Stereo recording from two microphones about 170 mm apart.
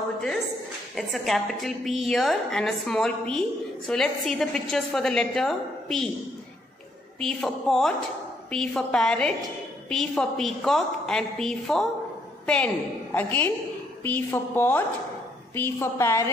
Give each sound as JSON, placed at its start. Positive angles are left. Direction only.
{"t": 0.9, "sound": "a woman's voice", "side_deg": 0}
{"t": 7.2, "sound": "a woman's voice", "side_deg": 5}